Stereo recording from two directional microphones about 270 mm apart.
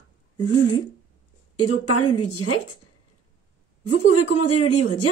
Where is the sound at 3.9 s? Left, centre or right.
Left.